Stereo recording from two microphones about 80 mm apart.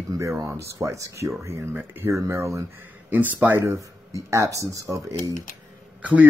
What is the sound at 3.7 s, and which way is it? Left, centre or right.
Speech, right.